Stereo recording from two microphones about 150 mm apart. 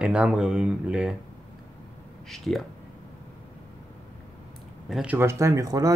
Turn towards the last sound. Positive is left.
turn(degrees=-20)  # may be behind; listen again after turning